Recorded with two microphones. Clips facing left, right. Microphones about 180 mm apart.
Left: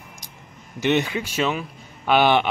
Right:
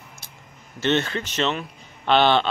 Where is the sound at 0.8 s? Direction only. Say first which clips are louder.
Left 1 dB; 15° left (ahead or behind).